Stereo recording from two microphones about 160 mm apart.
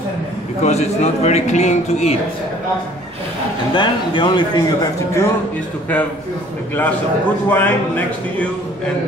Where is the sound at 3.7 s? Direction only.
30° left (ahead or behind).